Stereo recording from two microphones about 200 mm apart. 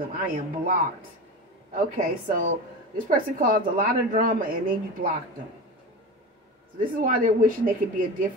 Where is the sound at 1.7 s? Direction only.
40° right (ahead or behind).